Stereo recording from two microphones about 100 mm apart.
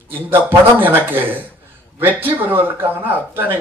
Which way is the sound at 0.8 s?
20° right (ahead or behind).